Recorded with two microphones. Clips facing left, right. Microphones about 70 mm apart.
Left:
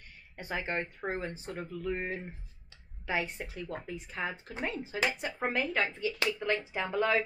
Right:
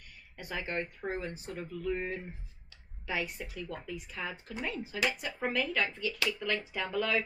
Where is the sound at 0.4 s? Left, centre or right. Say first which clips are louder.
Left 2 dB; left.